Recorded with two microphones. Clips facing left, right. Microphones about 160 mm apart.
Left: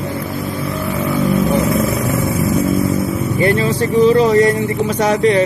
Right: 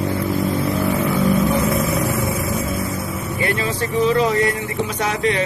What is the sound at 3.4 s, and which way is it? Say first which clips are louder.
Speech: left 7 dB; 35° left (ahead or behind).